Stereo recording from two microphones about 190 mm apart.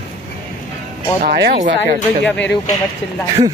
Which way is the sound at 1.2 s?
60° right (ahead or behind).